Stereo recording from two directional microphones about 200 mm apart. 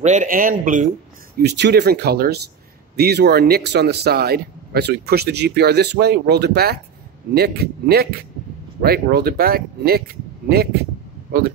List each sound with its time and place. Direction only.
0.0 s speech: 40° right (ahead or behind)
1.4 s speech: 55° right (ahead or behind)